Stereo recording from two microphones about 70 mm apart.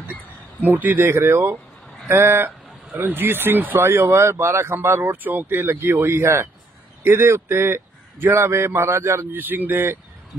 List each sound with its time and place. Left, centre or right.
0.7 s speech: right